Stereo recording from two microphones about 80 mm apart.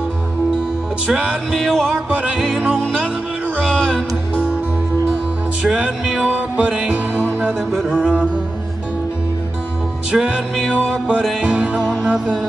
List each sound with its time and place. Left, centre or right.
1.0 s music: centre
1.9 s music: centre
2.7 s music: centre
5.6 s music: centre
7.7 s music: centre
8.0 s music: centre
10.1 s music: centre
10.6 s music: centre
11.4 s music: centre